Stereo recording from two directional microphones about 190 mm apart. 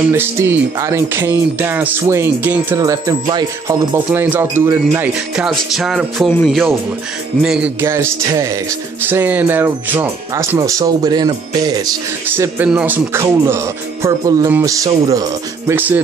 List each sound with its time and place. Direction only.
0.1 s speech: 15° right (ahead or behind)